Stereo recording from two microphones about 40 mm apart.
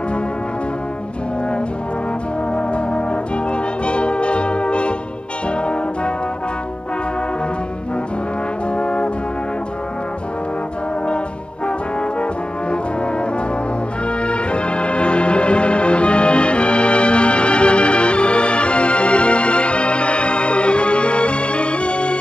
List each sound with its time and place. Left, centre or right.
2.5 s brass instrument: left
3.5 s music: left
5.5 s brass instrument: left
8.7 s brass instrument: left
14.2 s music: left